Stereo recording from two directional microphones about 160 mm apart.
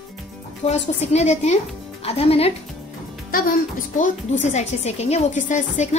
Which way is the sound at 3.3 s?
60° left (ahead or behind).